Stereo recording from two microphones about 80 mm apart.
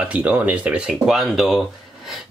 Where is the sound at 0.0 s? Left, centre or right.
Centre.